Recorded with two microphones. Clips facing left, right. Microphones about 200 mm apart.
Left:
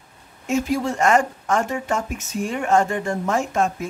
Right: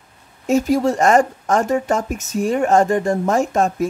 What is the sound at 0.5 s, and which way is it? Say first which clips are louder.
Speech: right 6 dB; 40° right (ahead or behind).